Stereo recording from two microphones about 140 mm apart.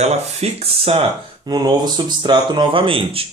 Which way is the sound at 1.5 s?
30° right (ahead or behind).